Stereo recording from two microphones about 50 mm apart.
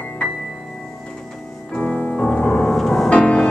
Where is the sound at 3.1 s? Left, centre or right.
Left.